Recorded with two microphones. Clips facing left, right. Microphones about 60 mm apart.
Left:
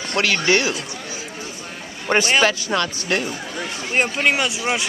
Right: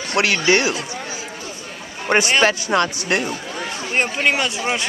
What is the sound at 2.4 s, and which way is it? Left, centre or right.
Speech, right.